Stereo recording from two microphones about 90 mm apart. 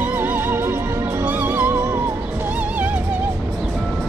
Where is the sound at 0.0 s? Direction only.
20° right (ahead or behind).